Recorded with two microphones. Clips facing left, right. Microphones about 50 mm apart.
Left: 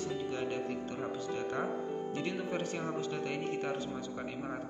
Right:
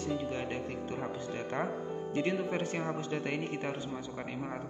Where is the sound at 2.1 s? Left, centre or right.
Right.